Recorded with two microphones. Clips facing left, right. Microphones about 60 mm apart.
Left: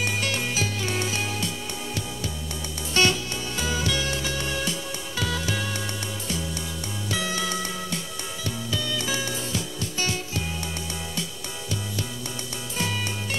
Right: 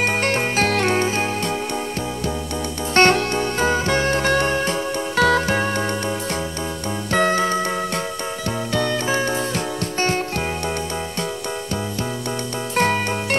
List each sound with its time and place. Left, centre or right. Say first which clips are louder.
0.0 s music: right 7 dB; right
0.7 s music: right 11 dB; right
0.9 s music: right 8 dB; right
2.9 s music: right 8 dB; right
7.1 s music: right 10 dB; right
8.7 s music: right 9 dB; right
12.7 s music: right 10 dB; right